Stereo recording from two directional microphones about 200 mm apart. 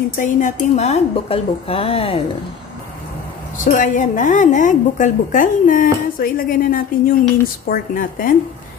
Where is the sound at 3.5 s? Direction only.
40° left (ahead or behind).